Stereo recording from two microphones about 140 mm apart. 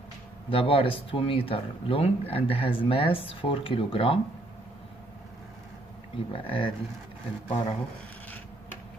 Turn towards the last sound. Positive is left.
turn(degrees=45)  # may be behind; listen again after turning